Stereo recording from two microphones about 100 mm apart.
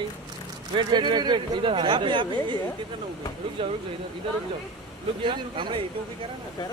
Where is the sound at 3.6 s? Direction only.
60° right (ahead or behind).